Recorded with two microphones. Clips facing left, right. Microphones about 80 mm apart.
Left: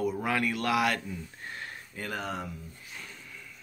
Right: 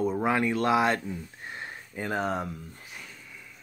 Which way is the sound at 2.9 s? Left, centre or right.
Centre.